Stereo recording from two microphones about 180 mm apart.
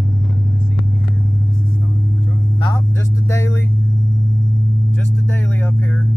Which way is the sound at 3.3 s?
15° left (ahead or behind).